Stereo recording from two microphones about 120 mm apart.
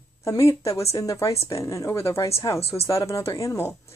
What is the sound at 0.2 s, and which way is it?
A woman's voice, 25° left (ahead or behind).